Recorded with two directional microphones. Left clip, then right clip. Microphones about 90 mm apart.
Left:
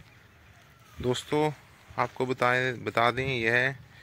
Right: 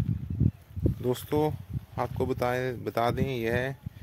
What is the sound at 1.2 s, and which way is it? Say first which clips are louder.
Speech: left 1 dB; 40° right (ahead or behind).